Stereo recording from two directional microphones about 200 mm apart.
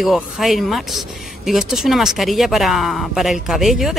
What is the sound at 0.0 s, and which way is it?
Speech, centre (ahead or behind).